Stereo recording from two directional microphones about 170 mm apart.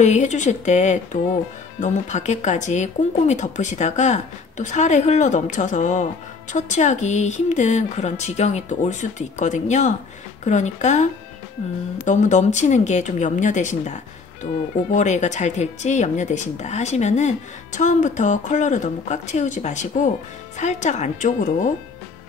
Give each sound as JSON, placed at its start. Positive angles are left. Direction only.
{"t": 0.0, "sound": "speech", "side_deg": 45}